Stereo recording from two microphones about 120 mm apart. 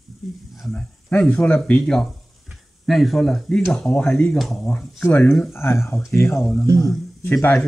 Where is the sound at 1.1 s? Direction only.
15° left (ahead or behind).